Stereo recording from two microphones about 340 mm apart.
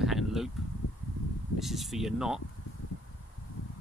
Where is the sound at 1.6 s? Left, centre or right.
Centre.